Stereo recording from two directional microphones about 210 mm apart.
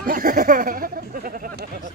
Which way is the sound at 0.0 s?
40° right (ahead or behind).